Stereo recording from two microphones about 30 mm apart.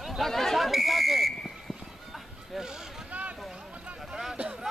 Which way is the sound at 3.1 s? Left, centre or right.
Right.